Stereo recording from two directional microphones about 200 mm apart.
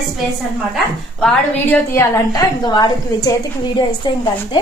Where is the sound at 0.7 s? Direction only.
5° left (ahead or behind).